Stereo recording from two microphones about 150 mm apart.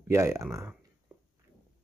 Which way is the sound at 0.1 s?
20° right (ahead or behind).